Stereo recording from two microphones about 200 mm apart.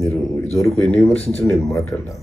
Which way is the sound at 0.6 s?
Centre (ahead or behind).